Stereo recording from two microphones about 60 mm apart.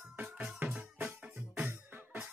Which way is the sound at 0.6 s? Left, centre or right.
Right.